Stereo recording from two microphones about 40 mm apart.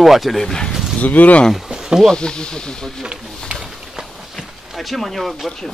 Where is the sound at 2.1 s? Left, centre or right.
Left.